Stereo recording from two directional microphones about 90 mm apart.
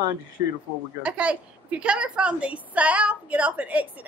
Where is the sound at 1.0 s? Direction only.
15° right (ahead or behind).